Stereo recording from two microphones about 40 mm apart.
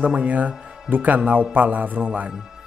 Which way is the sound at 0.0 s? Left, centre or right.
Right.